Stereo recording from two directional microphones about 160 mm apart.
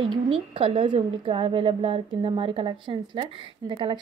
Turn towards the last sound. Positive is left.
turn(degrees=-30)  # may be behind; listen again after turning